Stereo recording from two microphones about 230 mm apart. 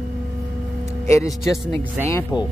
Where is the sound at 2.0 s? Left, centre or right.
Centre.